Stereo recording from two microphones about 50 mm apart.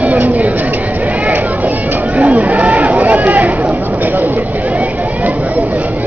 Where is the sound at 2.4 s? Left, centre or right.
Right.